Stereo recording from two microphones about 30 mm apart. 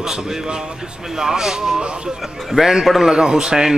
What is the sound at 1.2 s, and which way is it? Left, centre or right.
A man's voice, centre.